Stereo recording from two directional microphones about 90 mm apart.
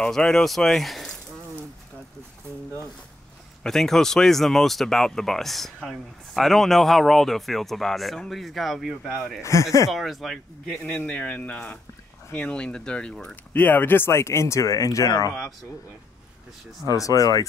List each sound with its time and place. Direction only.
0.0 s speech: 10° left (ahead or behind)
3.6 s speech: 5° left (ahead or behind)
9.4 s speech: 35° left (ahead or behind)
9.8 s speech: centre (ahead or behind)
13.5 s speech: 20° left (ahead or behind); by 15.3 s 40° left (ahead or behind)
16.9 s speech: 40° left (ahead or behind)